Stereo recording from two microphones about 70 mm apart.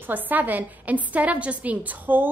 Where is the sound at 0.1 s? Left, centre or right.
Right.